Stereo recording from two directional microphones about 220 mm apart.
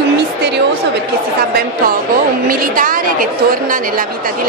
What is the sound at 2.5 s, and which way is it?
A woman's voice, 40° right (ahead or behind).